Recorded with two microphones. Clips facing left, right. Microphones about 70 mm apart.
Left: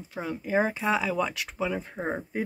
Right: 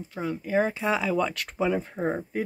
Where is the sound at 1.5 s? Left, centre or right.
Centre.